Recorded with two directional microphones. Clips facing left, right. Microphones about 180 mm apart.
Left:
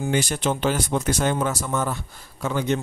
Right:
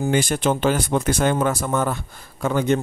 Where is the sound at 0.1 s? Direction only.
55° right (ahead or behind).